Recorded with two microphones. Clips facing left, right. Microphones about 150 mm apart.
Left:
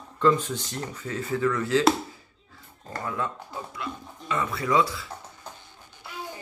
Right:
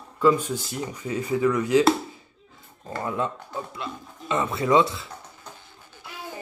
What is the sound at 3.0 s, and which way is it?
A man's voice, 25° right (ahead or behind).